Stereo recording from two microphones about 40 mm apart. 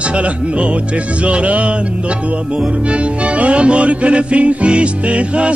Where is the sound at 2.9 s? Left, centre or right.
Right.